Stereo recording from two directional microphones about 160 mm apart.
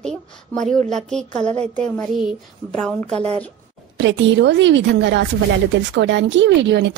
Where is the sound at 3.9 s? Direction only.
90° right.